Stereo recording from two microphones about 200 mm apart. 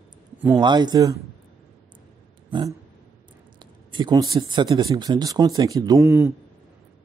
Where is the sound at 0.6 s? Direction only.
20° right (ahead or behind).